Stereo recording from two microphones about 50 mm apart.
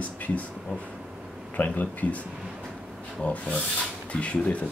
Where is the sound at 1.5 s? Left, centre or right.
Left.